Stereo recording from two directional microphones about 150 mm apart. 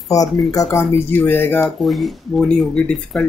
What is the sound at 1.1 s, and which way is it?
Speech, 15° left (ahead or behind).